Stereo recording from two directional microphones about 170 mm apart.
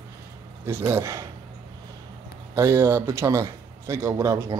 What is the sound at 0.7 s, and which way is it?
Speech, 15° right (ahead or behind).